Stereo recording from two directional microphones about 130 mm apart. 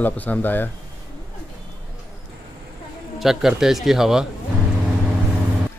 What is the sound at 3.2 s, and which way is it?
Speech, 5° right (ahead or behind).